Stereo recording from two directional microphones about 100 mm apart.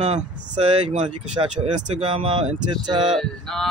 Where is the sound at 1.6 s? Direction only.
90° right.